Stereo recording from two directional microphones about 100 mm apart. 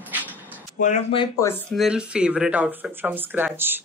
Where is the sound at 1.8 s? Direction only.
10° right (ahead or behind).